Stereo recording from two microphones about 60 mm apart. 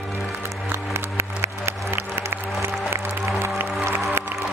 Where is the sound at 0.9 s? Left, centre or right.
Right.